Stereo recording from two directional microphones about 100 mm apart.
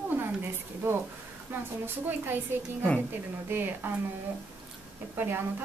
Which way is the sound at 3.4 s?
20° right (ahead or behind).